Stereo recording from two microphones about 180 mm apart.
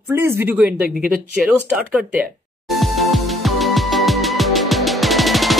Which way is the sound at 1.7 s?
5° right (ahead or behind).